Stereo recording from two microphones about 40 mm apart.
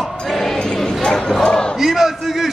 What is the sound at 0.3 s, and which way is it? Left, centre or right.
Crowd, centre.